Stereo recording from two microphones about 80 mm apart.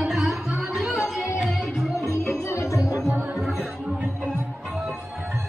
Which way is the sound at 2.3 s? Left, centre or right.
Left.